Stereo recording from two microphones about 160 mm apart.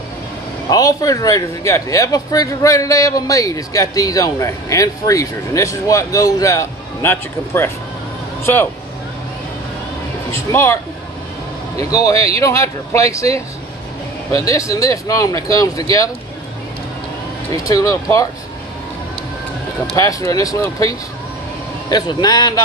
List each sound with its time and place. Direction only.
0.7 s a man's voice: 25° left (ahead or behind)
10.3 s speech: 15° left (ahead or behind)
11.9 s a man's voice: 20° left (ahead or behind)
14.3 s a man's voice: 20° left (ahead or behind)
17.5 s a man's voice: 20° left (ahead or behind)
20.0 s a man's voice: 20° left (ahead or behind)